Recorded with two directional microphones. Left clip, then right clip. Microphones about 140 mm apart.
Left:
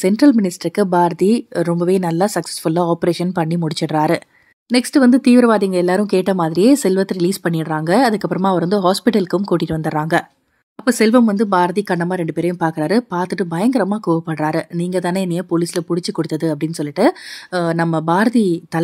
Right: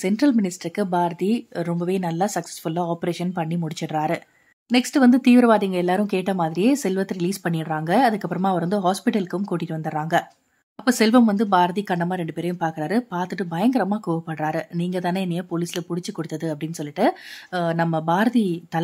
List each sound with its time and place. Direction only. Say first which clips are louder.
0.0 s speech: left 7 dB; 30° left (ahead or behind)
4.6 s speech: left 4 dB; 20° left (ahead or behind)
10.9 s speech: left 4 dB; 15° left (ahead or behind)